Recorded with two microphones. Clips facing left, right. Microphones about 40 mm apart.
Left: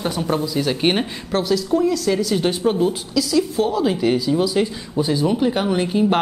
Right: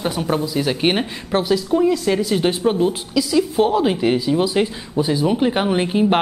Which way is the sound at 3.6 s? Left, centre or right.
Right.